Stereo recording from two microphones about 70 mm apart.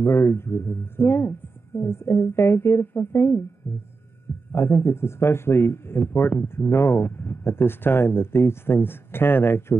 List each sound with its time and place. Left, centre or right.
0.0 s a man's voice: left
4.5 s a man's voice: left